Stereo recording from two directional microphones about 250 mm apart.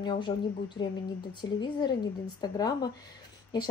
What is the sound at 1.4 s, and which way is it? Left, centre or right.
Speech, centre.